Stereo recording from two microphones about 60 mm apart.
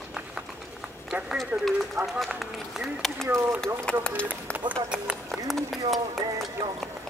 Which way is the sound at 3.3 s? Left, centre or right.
Right.